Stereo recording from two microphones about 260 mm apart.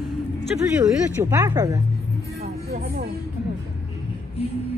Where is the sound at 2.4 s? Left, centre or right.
Right.